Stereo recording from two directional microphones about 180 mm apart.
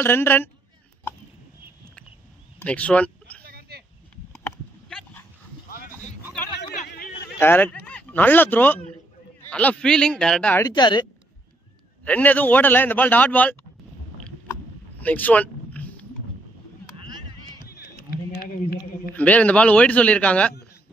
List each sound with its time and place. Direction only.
0.0 s a man's voice: 10° left (ahead or behind)
2.6 s speech: 5° left (ahead or behind)
3.4 s a sound: 60° right (ahead or behind)
4.8 s dog: 5° left (ahead or behind)
5.7 s a sound: 50° left (ahead or behind)
7.3 s speech: 10° left (ahead or behind)
10.7 s a woman's voice: 25° left (ahead or behind)
12.0 s a man's voice: 10° left (ahead or behind)
15.0 s a sound: 10° left (ahead or behind)
17.6 s run: 60° left (ahead or behind)
19.1 s a man's voice: 10° left (ahead or behind)